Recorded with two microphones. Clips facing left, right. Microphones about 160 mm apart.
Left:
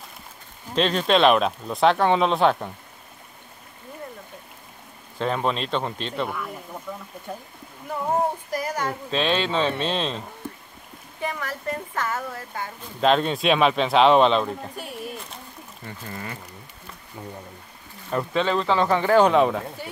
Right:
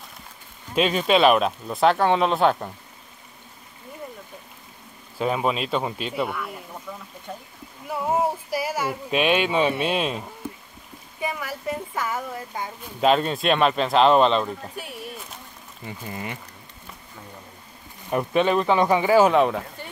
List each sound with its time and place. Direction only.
0.7 s speech: 5° right (ahead or behind)
5.2 s speech: 5° right (ahead or behind)
7.3 s speech: 5° left (ahead or behind)
7.9 s speech: 5° right (ahead or behind)
13.1 s speech: centre (ahead or behind)
18.1 s speech: 15° right (ahead or behind); by 19.9 s centre (ahead or behind)